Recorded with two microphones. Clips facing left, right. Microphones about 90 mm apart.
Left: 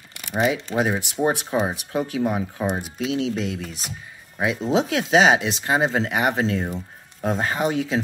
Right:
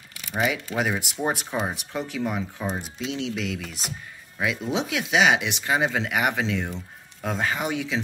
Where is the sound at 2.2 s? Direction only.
40° left (ahead or behind).